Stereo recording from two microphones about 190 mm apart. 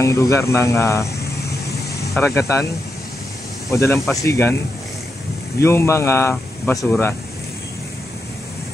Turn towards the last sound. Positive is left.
turn(degrees=10)  # may be behind; listen again after turning